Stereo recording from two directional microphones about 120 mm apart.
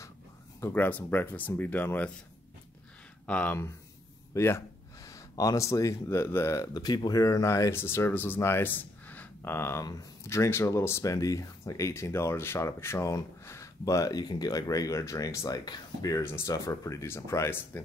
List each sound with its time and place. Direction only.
0.6 s speech: 20° left (ahead or behind)
3.3 s speech: 10° left (ahead or behind)
4.3 s speech: 25° left (ahead or behind)